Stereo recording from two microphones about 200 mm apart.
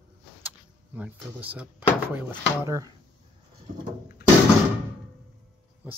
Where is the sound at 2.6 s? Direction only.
15° right (ahead or behind).